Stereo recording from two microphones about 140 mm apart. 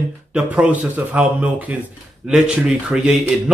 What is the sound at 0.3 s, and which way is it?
A man's voice, 5° right (ahead or behind).